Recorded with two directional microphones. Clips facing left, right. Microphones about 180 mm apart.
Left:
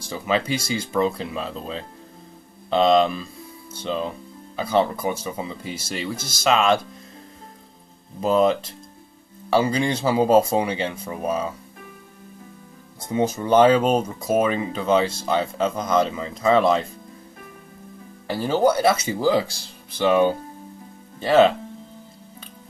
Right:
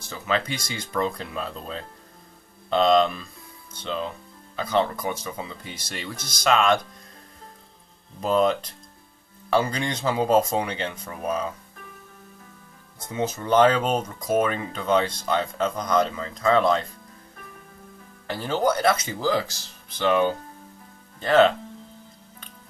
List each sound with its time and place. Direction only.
0.0 s speech: 10° left (ahead or behind)
6.1 s speech: 25° left (ahead or behind)
6.4 s speech: 5° left (ahead or behind)
8.2 s speech: 5° left (ahead or behind)
13.0 s speech: 10° left (ahead or behind)
18.2 s speech: 10° left (ahead or behind)